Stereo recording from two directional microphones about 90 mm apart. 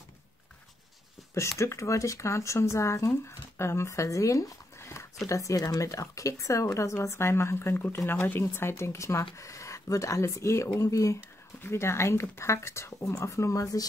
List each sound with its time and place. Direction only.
1.3 s speech: 30° left (ahead or behind)